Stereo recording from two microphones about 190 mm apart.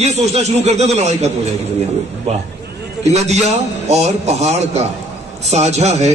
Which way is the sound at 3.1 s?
35° right (ahead or behind).